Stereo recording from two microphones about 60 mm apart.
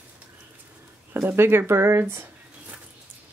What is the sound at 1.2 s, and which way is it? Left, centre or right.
Speech, right.